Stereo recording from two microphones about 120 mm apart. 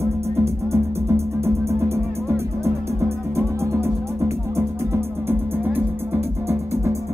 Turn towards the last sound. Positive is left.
turn(degrees=-15)  # may be behind; listen again after turning